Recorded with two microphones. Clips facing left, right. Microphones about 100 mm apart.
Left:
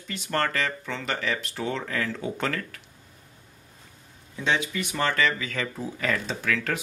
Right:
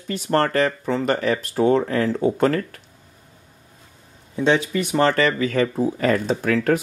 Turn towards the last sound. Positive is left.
turn(degrees=-40)  # may be behind; listen again after turning